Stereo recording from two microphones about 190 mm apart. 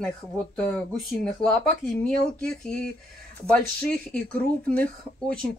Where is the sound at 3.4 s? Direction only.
5° left (ahead or behind).